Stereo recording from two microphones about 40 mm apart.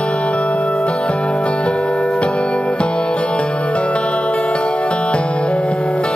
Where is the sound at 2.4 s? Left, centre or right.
Centre.